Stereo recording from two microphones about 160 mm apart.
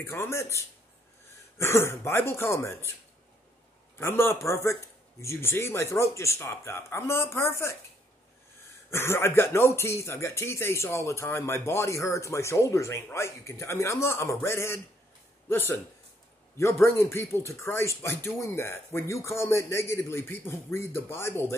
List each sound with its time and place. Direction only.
0.0 s speech: 15° left (ahead or behind)
4.0 s speech: 15° left (ahead or behind)
8.9 s a man's voice: 15° left (ahead or behind)